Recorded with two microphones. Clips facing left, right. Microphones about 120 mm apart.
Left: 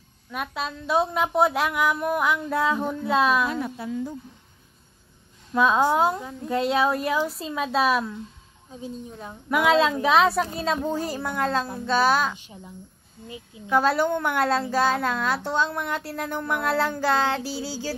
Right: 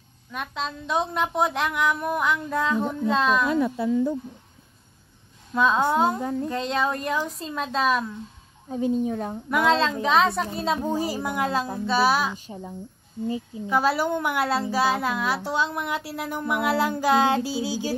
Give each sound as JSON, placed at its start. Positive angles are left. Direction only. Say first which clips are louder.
{"t": 0.3, "sound": "a woman's voice", "louder": "left 1 dB", "side_deg": 5}
{"t": 5.5, "sound": "a woman's voice", "louder": "left 1 dB", "side_deg": 5}
{"t": 8.6, "sound": "speech", "louder": "right 12 dB", "side_deg": -60}
{"t": 9.5, "sound": "a woman's voice", "louder": "left 2 dB", "side_deg": 5}
{"t": 10.8, "sound": "a woman's voice", "louder": "right 1 dB", "side_deg": -10}
{"t": 12.4, "sound": "speech", "louder": "right 7 dB", "side_deg": -40}
{"t": 13.7, "sound": "a woman's voice", "louder": "left 2 dB", "side_deg": -5}